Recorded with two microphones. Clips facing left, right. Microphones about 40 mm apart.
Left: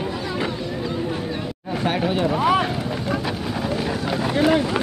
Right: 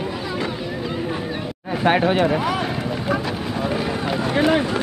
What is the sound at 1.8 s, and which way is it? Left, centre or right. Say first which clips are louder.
Speech: right 5 dB; right.